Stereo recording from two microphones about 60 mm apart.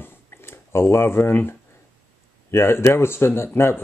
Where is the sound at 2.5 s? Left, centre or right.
Left.